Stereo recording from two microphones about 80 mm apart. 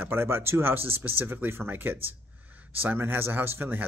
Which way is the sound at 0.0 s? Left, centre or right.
Right.